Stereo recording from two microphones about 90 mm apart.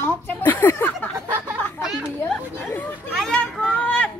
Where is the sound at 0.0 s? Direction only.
20° left (ahead or behind).